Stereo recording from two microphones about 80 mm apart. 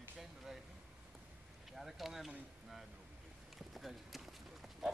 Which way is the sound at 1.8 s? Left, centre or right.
Centre.